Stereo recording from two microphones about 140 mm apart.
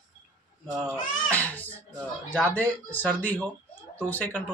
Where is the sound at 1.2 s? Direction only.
10° left (ahead or behind).